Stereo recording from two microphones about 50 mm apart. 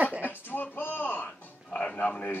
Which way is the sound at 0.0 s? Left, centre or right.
Right.